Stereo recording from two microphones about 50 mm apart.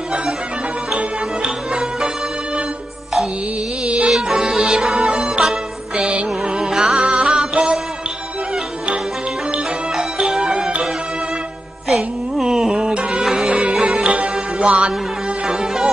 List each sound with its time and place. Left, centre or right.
0.9 s music: centre
3.8 s music: right
4.1 s music: centre
6.7 s music: centre
7.0 s music: centre
9.9 s music: centre
11.9 s music: centre
13.5 s music: right
15.4 s music: centre